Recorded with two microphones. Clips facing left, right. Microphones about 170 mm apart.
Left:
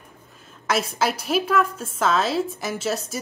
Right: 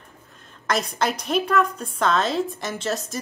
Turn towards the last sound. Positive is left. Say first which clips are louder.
# left 1 dB
turn(degrees=5)  # may be behind; listen again after turning